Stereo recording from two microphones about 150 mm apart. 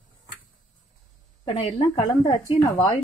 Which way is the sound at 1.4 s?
40° left (ahead or behind).